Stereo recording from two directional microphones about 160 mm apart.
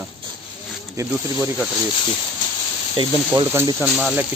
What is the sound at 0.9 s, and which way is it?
Speech, 20° right (ahead or behind).